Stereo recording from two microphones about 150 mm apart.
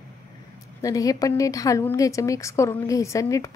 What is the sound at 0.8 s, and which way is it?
Speech, 25° left (ahead or behind).